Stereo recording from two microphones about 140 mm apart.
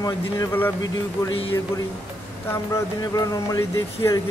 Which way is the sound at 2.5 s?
25° left (ahead or behind).